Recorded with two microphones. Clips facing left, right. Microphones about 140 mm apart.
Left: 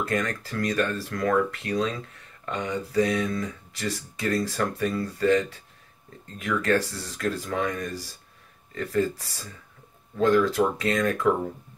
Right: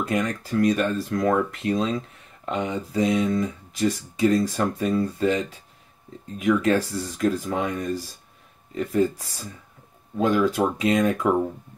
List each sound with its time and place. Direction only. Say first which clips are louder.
0.0 s speech: right 2 dB; 15° right (ahead or behind)